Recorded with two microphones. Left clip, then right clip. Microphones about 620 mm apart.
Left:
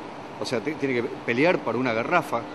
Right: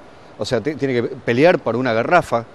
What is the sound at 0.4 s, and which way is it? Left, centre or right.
Speech, right.